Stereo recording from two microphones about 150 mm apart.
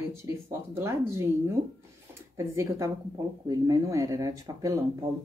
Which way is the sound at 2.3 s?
20° right (ahead or behind).